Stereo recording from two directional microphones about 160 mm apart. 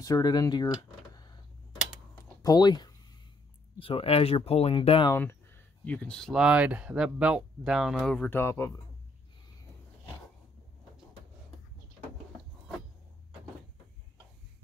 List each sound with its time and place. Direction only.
0.0 s speech: 25° left (ahead or behind)
2.4 s speech: 25° left (ahead or behind)
3.8 s speech: 35° left (ahead or behind)
5.1 s speech: 15° left (ahead or behind)